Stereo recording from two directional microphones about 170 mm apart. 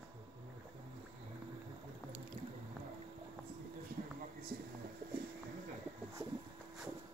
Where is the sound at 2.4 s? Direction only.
35° right (ahead or behind).